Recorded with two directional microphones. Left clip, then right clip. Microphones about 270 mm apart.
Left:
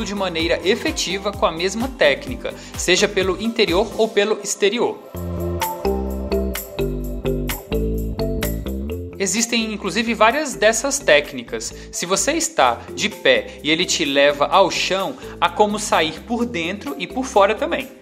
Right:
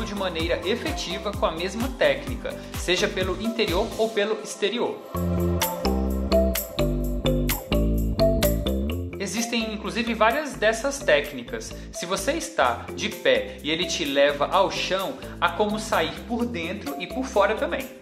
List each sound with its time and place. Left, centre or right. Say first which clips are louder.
0.0 s a woman's voice: left 6 dB; left
5.8 s music: left 4 dB; centre
9.2 s a woman's voice: left 7 dB; left